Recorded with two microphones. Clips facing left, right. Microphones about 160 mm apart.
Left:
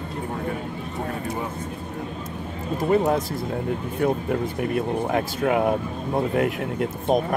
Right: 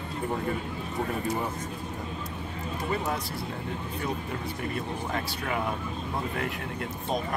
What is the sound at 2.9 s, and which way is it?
Speech, 50° left (ahead or behind).